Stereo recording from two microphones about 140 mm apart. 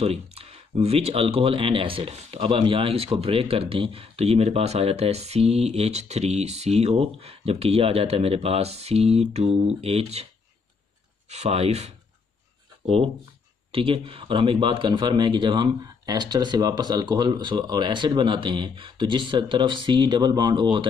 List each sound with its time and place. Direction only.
0.0 s speech: 45° right (ahead or behind)
11.2 s speech: 50° right (ahead or behind); by 20.9 s 35° right (ahead or behind)